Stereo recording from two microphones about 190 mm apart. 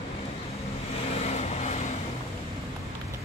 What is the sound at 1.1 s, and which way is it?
Vehicle, 35° left (ahead or behind).